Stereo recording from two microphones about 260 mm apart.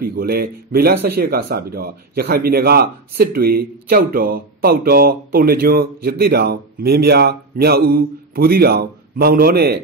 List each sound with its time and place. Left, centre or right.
0.0 s speech: right